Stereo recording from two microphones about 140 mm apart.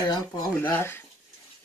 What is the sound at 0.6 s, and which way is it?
Speech, 15° left (ahead or behind).